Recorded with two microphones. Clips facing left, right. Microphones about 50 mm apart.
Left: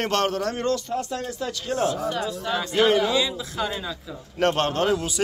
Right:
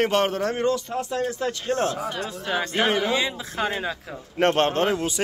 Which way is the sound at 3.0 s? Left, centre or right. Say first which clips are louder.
Left 1 dB; right.